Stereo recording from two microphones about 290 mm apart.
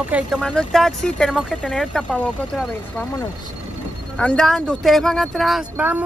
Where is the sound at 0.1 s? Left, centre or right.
Centre.